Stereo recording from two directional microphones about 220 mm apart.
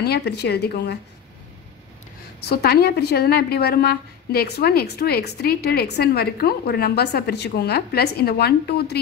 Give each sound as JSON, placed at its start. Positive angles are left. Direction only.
{"t": 0.0, "sound": "a woman's voice", "side_deg": 50}
{"t": 2.4, "sound": "a woman's voice", "side_deg": 45}